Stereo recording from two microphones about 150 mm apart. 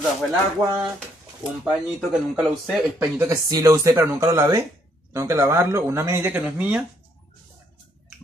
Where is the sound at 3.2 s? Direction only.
20° right (ahead or behind).